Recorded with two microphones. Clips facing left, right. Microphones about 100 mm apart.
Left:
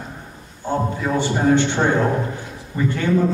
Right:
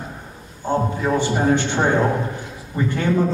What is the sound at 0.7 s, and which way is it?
A man's voice, 15° right (ahead or behind).